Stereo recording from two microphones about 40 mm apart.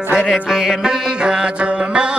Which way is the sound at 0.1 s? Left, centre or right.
Centre.